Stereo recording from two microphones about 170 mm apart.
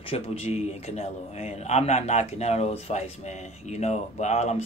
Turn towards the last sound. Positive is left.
turn(degrees=40)  # may be behind; listen again after turning